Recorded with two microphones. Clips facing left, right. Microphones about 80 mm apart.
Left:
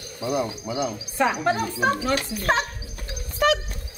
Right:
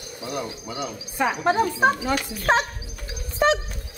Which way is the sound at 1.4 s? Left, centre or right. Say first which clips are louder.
Right 3 dB; right.